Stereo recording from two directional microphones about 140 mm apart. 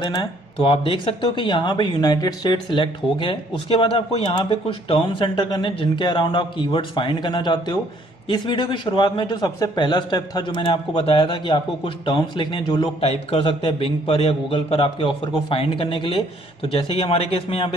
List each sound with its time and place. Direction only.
0.0 s a man's voice: 30° left (ahead or behind)
13.0 s a man's voice: 45° left (ahead or behind)